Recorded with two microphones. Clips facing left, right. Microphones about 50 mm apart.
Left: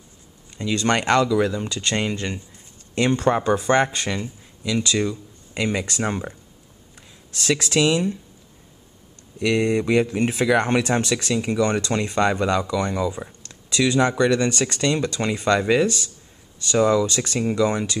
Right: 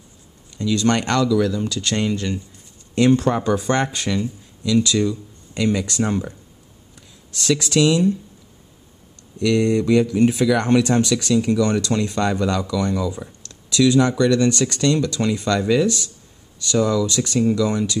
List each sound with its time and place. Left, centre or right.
0.6 s speech: left
4.1 s speech: centre
9.4 s speech: centre